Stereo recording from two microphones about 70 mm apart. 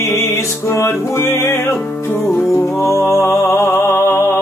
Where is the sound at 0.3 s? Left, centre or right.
Left.